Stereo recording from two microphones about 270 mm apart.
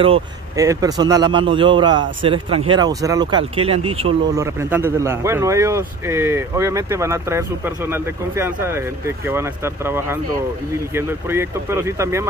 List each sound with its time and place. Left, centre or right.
0.0 s speech: centre
4.6 s speech: centre